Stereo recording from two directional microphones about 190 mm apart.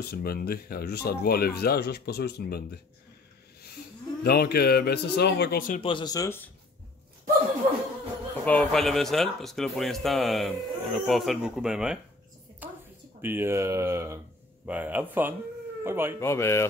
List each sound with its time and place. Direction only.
0.0 s speech: 55° left (ahead or behind)
4.2 s speech: 55° left (ahead or behind)
5.8 s speech: 25° left (ahead or behind)
8.5 s speech: 5° left (ahead or behind)
12.6 s a sound: 10° right (ahead or behind)
13.2 s speech: 10° right (ahead or behind)
16.2 s speech: 15° left (ahead or behind)